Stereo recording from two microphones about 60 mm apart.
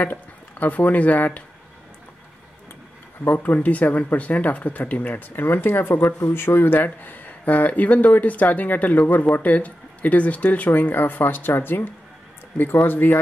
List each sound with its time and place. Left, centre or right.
0.0 s speech: left
3.3 s speech: left